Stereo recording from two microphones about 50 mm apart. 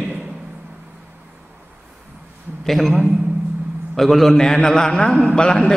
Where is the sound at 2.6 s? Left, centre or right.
Centre.